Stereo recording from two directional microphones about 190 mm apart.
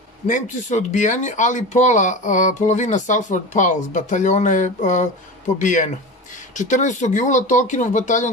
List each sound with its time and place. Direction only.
0.3 s speech: 40° left (ahead or behind)